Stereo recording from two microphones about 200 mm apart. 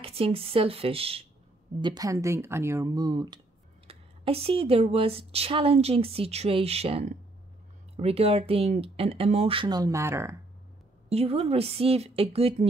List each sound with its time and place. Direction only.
0.0 s speech: 30° right (ahead or behind)
11.1 s speech: 30° right (ahead or behind)